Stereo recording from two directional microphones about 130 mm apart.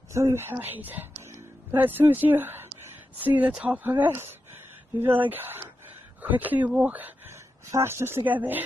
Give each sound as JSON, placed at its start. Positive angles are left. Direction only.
{"t": 0.1, "sound": "speech", "side_deg": -20}